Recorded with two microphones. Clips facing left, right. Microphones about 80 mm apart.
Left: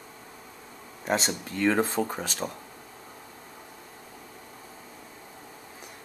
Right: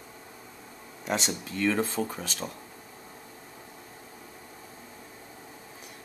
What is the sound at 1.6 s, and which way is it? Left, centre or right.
Speech, left.